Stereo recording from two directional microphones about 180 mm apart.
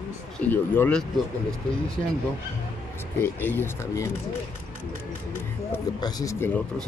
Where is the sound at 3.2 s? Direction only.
10° left (ahead or behind).